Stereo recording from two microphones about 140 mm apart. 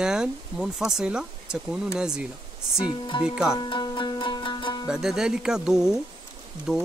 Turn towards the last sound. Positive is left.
turn(degrees=-5)  # may be behind; listen again after turning